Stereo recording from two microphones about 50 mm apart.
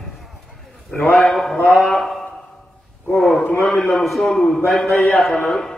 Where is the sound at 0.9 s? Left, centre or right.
Left.